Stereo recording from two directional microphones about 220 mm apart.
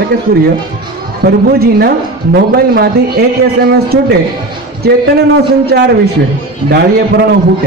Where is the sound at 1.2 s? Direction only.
45° right (ahead or behind).